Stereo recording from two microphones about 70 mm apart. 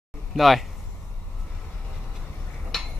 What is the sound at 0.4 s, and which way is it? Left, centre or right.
Speech, centre.